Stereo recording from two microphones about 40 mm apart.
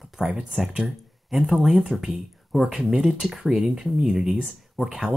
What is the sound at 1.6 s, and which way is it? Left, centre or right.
Speech, centre.